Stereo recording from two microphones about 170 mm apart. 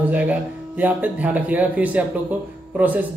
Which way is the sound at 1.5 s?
10° right (ahead or behind).